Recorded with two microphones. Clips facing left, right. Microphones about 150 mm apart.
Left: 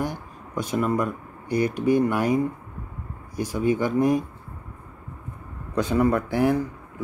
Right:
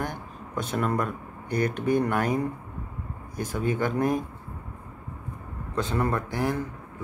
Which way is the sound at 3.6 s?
10° left (ahead or behind).